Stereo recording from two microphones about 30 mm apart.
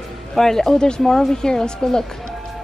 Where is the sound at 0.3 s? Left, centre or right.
Centre.